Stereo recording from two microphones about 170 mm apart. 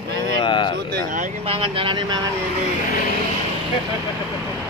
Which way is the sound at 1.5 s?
30° right (ahead or behind).